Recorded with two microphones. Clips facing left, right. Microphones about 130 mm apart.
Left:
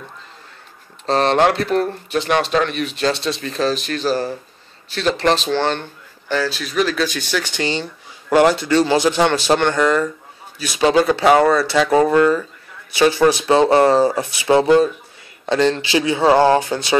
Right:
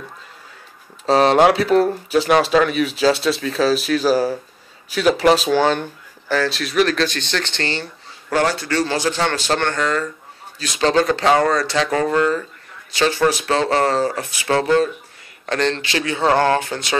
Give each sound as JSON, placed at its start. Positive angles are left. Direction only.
{"t": 1.0, "sound": "speech", "side_deg": -5}
{"t": 16.0, "sound": "speech", "side_deg": 15}